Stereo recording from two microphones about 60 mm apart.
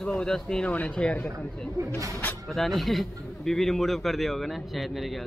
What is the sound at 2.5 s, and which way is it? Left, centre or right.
A man's voice, centre.